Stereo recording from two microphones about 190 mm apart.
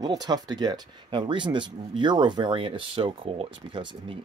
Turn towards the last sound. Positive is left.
turn(degrees=-25)  # may be behind; listen again after turning